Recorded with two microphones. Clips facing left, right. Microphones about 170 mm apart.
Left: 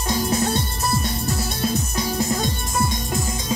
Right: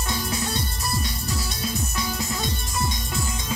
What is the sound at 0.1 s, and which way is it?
Music, 45° left (ahead or behind).